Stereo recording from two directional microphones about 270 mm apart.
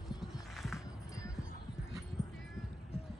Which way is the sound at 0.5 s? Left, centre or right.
Centre.